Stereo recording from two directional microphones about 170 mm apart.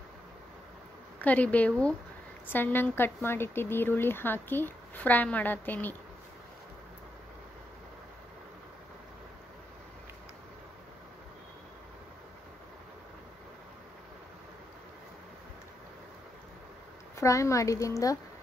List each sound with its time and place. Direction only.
1.2 s speech: 10° left (ahead or behind)
17.2 s a woman's voice: 20° left (ahead or behind)